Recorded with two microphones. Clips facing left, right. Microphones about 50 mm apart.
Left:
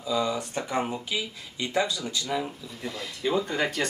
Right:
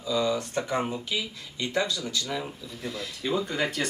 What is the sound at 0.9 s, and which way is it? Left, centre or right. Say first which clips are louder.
Speech: even; centre.